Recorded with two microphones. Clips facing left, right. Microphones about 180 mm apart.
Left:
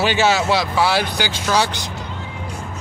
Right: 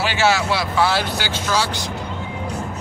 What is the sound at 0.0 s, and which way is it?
A man's voice, 20° left (ahead or behind).